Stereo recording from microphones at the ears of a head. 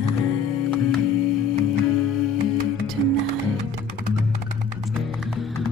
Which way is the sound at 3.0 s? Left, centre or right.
Right.